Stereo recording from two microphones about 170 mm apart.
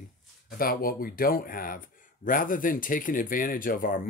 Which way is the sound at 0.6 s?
60° left (ahead or behind).